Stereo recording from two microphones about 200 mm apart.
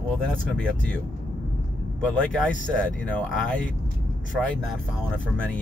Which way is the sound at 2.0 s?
5° left (ahead or behind).